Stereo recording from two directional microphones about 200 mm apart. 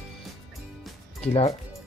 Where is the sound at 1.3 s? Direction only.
30° left (ahead or behind).